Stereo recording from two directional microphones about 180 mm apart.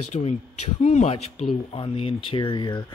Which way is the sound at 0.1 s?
35° left (ahead or behind).